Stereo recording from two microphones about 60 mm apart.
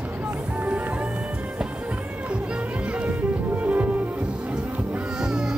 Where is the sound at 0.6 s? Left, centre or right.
Right.